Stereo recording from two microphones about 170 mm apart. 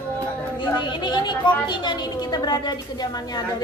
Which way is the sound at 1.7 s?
25° left (ahead or behind).